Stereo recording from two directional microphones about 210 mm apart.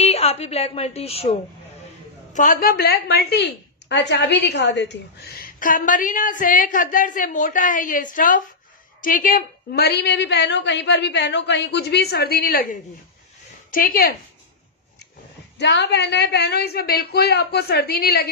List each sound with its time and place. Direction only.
0.0 s a woman's voice: 30° left (ahead or behind)
2.3 s a woman's voice: 40° left (ahead or behind)
13.7 s a woman's voice: 40° left (ahead or behind)
15.5 s a woman's voice: 55° left (ahead or behind)